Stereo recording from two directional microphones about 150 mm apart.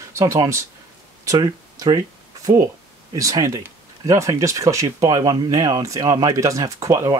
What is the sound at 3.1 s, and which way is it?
Speech, 20° right (ahead or behind).